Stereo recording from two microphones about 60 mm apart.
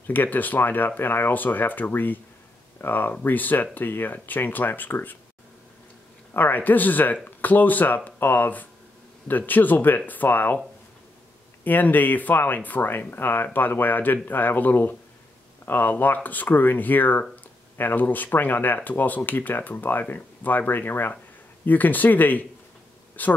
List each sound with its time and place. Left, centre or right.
0.0 s speech: left
6.3 s speech: left
11.6 s speech: left